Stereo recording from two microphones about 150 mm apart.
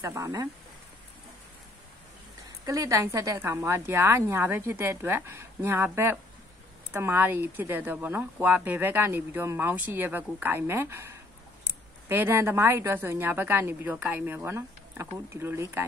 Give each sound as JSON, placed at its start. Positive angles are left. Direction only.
{"t": 0.0, "sound": "speech", "side_deg": -20}
{"t": 2.6, "sound": "speech", "side_deg": -20}